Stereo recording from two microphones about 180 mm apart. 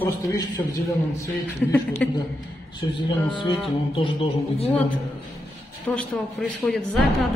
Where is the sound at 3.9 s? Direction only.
30° left (ahead or behind).